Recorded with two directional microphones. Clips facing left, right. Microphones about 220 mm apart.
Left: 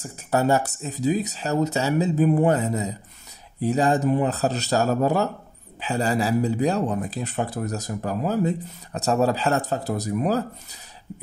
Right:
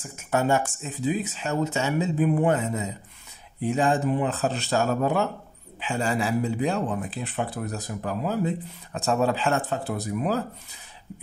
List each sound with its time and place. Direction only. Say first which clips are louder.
0.0 s speech: left 3 dB; 35° left (ahead or behind)